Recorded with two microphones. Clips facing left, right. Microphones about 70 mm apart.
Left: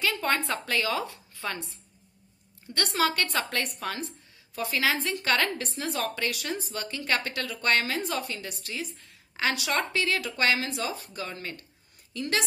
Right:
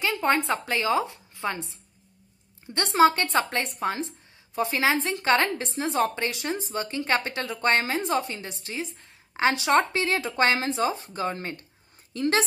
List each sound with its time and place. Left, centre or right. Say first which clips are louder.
0.0 s a woman's voice: right 4 dB; right